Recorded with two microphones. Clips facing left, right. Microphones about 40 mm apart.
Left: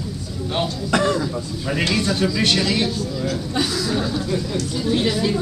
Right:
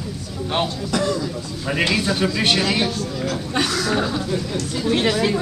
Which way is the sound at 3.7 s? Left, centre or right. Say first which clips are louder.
Right 2 dB; right.